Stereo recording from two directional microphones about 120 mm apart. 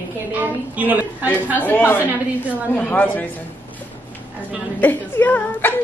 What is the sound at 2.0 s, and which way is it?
Speech, 15° right (ahead or behind).